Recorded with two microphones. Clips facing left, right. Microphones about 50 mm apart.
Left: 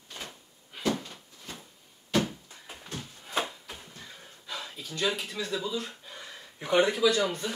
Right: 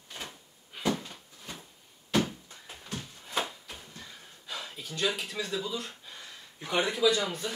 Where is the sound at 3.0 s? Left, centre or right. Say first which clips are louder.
Left 2 dB; centre.